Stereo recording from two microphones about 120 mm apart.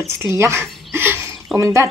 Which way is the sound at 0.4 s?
20° right (ahead or behind).